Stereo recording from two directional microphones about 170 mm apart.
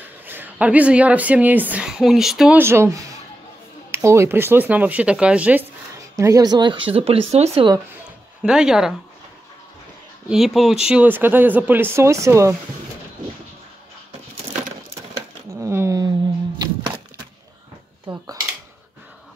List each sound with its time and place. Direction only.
0.2 s a woman's voice: 10° right (ahead or behind)
2.6 s a woman's voice: 15° right (ahead or behind); by 7.7 s 35° right (ahead or behind)
8.4 s speech: 5° right (ahead or behind)
10.3 s a woman's voice: centre (ahead or behind); by 12.5 s 15° right (ahead or behind)
15.6 s a sound: 15° right (ahead or behind)
18.0 s dishes: 20° right (ahead or behind)